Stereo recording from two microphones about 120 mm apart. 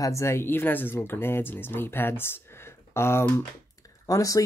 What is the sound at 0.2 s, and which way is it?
Speech, 20° left (ahead or behind).